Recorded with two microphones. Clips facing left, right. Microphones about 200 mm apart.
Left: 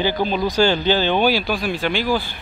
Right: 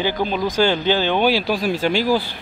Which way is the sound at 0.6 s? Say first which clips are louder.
Even; 15° right (ahead or behind).